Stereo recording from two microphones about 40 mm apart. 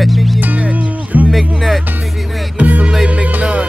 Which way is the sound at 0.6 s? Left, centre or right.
Right.